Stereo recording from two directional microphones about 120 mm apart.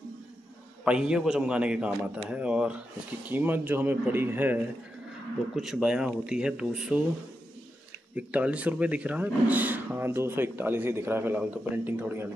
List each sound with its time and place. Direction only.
0.8 s speech: 10° right (ahead or behind)
5.6 s speech: 5° right (ahead or behind)
8.2 s speech: 10° right (ahead or behind)